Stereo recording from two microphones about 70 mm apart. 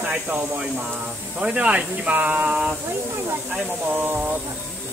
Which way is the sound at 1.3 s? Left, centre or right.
Centre.